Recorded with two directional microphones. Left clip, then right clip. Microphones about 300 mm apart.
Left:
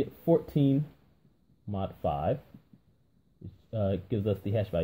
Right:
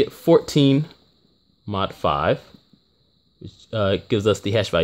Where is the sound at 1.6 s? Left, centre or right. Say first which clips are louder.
Right 10 dB; right.